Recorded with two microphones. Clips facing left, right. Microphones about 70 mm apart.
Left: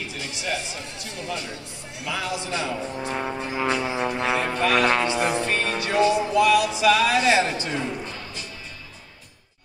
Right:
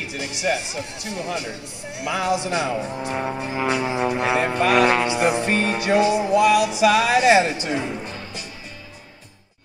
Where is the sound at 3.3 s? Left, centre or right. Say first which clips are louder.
Right 1 dB; centre.